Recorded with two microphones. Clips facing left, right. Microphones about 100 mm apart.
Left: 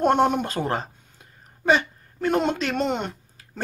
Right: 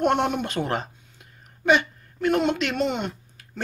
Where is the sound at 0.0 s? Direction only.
40° left (ahead or behind).